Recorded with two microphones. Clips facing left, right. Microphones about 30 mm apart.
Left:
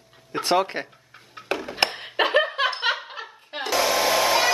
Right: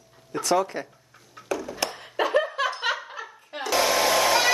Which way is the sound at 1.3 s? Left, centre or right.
Left.